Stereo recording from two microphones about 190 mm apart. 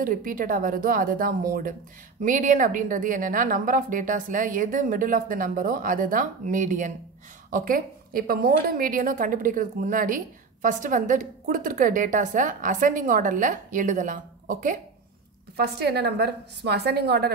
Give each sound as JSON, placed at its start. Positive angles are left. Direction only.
{"t": 0.0, "sound": "a woman's voice", "side_deg": -45}
{"t": 15.5, "sound": "a woman's voice", "side_deg": -55}